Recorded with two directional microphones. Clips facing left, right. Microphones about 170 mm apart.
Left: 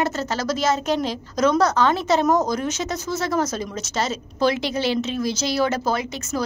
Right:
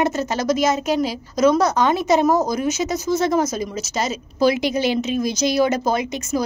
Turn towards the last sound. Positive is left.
turn(degrees=-15)  # may be behind; listen again after turning